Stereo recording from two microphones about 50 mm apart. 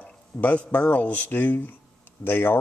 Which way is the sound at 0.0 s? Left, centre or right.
Left.